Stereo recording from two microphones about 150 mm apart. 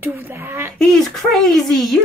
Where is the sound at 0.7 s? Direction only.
Centre (ahead or behind).